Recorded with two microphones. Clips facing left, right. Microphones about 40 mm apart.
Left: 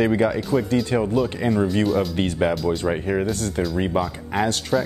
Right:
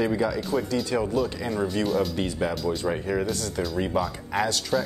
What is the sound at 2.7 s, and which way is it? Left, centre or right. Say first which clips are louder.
Speech: left 4 dB; left.